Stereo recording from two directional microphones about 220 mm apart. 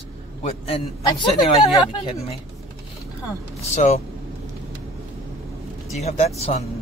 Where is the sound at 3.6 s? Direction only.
30° left (ahead or behind).